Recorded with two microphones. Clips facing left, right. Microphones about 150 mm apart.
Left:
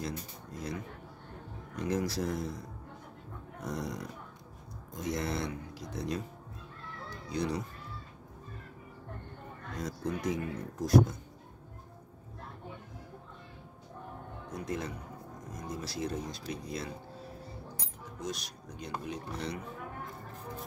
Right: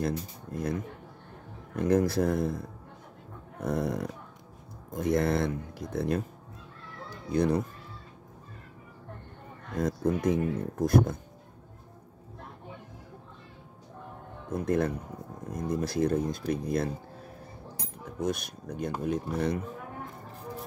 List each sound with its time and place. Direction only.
0.0 s speech: 55° right (ahead or behind)
1.8 s speech: 55° right (ahead or behind)
7.2 s speech: 55° right (ahead or behind)
9.8 s speech: 55° right (ahead or behind)
14.5 s speech: 55° right (ahead or behind)
18.2 s speech: 55° right (ahead or behind)